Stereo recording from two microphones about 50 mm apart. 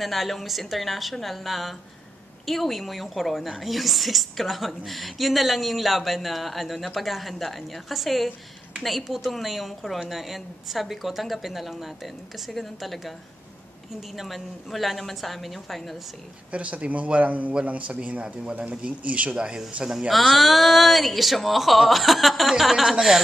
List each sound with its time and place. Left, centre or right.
0.0 s a woman's voice: centre
14.1 s a woman's voice: centre
16.5 s a man's voice: right
18.2 s a man's voice: centre
19.3 s speech: centre
20.1 s a woman's voice: centre